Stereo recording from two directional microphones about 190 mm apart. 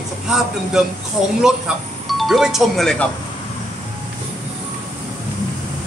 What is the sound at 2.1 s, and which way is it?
Speech, centre (ahead or behind).